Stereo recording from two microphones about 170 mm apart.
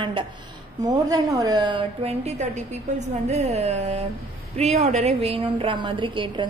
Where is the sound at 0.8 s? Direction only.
20° right (ahead or behind).